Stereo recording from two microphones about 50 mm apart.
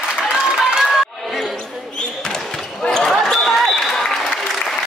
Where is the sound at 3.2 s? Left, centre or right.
Centre.